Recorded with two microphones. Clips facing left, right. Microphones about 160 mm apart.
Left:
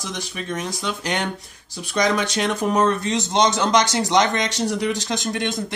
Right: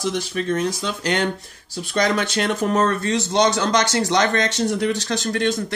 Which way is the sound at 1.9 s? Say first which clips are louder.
Even; 15° left (ahead or behind).